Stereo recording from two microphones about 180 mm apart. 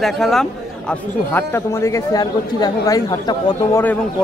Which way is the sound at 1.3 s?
10° left (ahead or behind).